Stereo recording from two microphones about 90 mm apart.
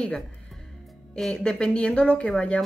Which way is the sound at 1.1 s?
5° left (ahead or behind).